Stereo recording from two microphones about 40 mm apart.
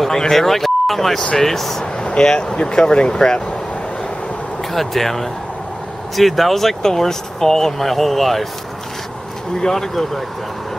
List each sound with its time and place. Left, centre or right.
0.0 s speech: centre
2.0 s speech: left
4.7 s speech: centre
9.6 s speech: centre